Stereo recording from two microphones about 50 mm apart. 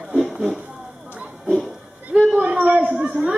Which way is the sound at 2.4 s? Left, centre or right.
Right.